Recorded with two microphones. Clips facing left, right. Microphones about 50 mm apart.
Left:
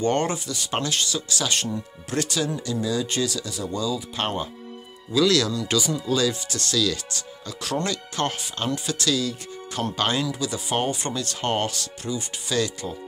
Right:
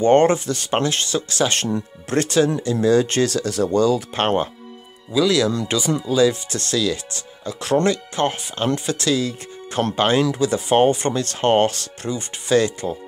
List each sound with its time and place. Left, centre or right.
0.0 s speech: right
5.1 s speech: centre
5.7 s speech: right